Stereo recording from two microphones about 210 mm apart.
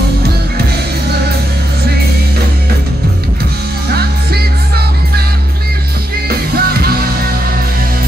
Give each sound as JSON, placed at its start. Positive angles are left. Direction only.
{"t": 3.9, "sound": "music", "side_deg": -50}
{"t": 6.2, "sound": "music", "side_deg": -45}